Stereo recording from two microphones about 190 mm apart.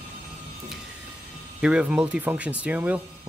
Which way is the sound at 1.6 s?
5° right (ahead or behind).